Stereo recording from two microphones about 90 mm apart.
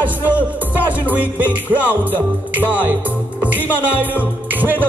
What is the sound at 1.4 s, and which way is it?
A capella, 20° right (ahead or behind).